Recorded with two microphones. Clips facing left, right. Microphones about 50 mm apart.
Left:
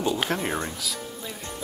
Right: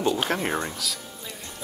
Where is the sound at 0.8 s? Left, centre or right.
Centre.